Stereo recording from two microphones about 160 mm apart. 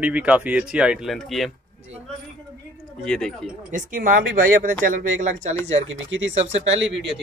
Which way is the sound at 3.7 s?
55° right (ahead or behind).